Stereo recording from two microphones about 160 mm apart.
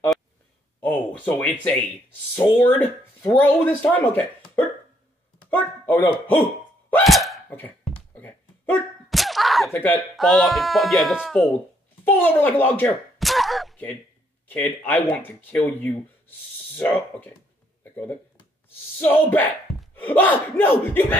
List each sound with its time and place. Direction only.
0.7 s speech: 10° left (ahead or behind)
5.5 s speech: 10° left (ahead or behind)
6.9 s hiccup: centre (ahead or behind)
7.4 s a sound: 10° left (ahead or behind)
9.1 s slap: centre (ahead or behind)
9.8 s speech: 10° left (ahead or behind)
10.1 s speech: centre (ahead or behind)
12.0 s speech: 10° left (ahead or behind)
13.2 s a sound: centre (ahead or behind)
14.5 s speech: 10° left (ahead or behind)
18.9 s speech: 10° left (ahead or behind)
19.7 s a sound: centre (ahead or behind)
20.1 s speech: 10° left (ahead or behind)